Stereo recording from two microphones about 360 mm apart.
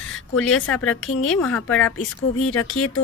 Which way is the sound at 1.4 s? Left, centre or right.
Centre.